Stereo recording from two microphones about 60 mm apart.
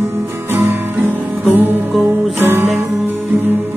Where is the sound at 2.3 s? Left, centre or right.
Right.